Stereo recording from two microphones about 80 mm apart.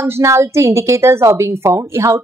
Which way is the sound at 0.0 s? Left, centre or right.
Right.